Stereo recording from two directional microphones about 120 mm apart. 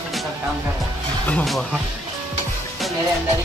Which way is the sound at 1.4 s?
Centre (ahead or behind).